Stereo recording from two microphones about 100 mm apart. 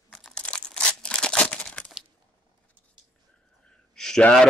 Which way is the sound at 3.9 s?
5° left (ahead or behind).